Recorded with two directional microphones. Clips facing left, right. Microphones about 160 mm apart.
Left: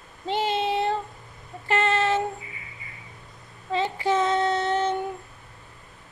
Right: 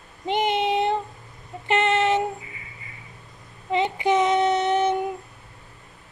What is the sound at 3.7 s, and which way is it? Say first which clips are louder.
Child singing: right 3 dB; 15° right (ahead or behind).